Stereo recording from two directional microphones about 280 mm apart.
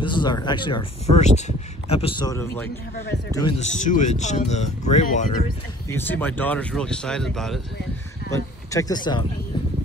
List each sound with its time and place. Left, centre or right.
0.0 s speech: centre
5.9 s speech: centre